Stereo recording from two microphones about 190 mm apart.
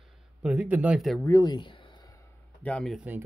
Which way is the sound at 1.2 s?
20° left (ahead or behind).